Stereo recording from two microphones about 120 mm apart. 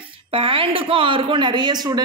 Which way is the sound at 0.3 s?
50° right (ahead or behind).